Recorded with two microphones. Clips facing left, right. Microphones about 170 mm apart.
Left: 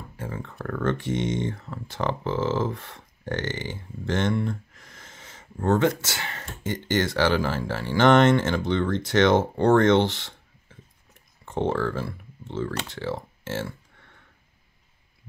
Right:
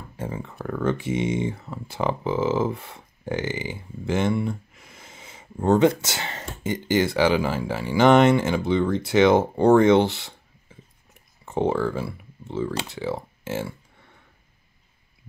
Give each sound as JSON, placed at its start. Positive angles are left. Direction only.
{"t": 0.4, "sound": "speech", "side_deg": -5}